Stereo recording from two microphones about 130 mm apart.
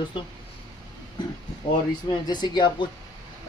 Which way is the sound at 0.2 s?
35° left (ahead or behind).